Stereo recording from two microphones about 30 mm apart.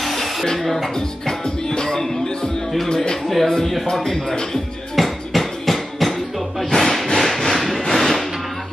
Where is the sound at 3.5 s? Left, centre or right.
Left.